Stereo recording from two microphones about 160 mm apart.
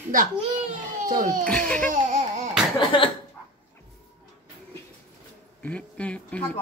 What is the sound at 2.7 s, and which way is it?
Cough, 30° left (ahead or behind).